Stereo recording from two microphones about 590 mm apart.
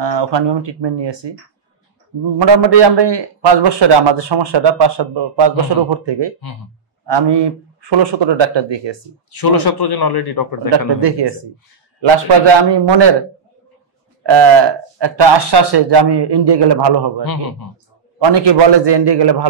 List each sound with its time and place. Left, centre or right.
0.0 s a man's voice: right
2.3 s a man's voice: right
9.4 s a man's voice: left
10.9 s speech: right
12.4 s a man's voice: right
14.2 s speech: right
17.2 s a man's voice: left
18.3 s a man's voice: right